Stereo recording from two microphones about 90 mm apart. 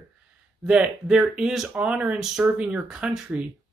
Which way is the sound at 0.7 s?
10° right (ahead or behind).